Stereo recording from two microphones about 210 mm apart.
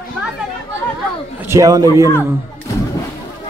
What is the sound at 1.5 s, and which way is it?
Speech, 15° right (ahead or behind).